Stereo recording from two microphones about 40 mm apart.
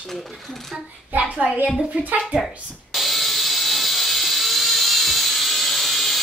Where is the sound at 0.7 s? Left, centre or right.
Right.